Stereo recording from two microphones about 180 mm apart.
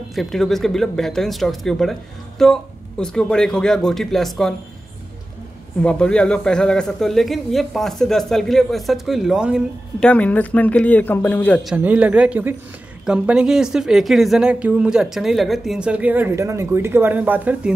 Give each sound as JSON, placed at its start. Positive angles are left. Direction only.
{"t": 0.1, "sound": "a woman's voice", "side_deg": 0}
{"t": 5.8, "sound": "a woman's voice", "side_deg": 5}
{"t": 10.0, "sound": "a man's voice", "side_deg": 10}
{"t": 11.6, "sound": "a woman's voice", "side_deg": -10}